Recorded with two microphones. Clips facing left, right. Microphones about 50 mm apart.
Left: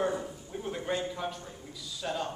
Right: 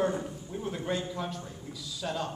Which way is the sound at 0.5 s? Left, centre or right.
Centre.